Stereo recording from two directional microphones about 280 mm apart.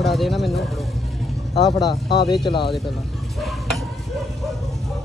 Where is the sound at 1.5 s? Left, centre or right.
Centre.